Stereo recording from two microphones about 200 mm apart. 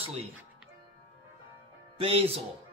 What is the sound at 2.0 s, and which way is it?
Speech, 25° right (ahead or behind).